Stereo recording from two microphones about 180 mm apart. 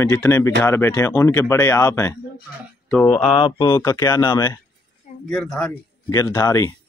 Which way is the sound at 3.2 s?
30° left (ahead or behind).